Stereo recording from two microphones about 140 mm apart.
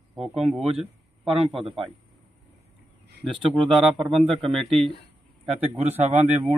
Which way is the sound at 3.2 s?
35° right (ahead or behind).